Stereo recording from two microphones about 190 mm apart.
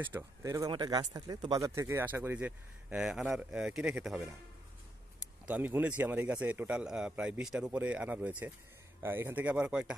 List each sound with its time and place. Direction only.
0.0 s a man's voice: 15° right (ahead or behind)
5.5 s a man's voice: 10° right (ahead or behind)